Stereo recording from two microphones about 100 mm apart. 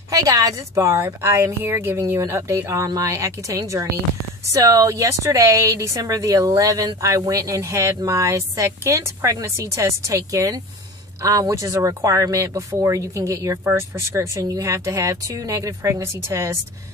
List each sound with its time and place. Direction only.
0.1 s a woman's voice: 35° right (ahead or behind)